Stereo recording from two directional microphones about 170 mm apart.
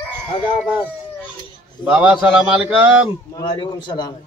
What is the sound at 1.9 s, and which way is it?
A man's voice, 5° right (ahead or behind).